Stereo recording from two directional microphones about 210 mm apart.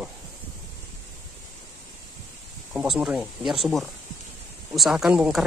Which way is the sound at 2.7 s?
Centre (ahead or behind).